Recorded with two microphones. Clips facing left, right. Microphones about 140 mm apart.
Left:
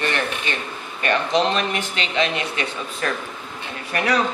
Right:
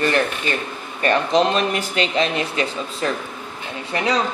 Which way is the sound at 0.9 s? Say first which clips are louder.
Right 3 dB; 35° right (ahead or behind).